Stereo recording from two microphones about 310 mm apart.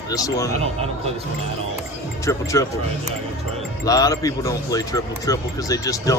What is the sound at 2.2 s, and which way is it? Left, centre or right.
Speech, centre.